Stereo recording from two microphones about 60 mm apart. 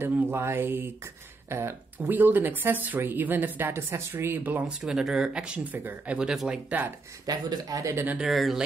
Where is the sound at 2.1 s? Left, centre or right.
Right.